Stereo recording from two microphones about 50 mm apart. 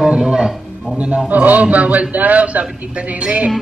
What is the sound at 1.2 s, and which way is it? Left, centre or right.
A man's voice, right.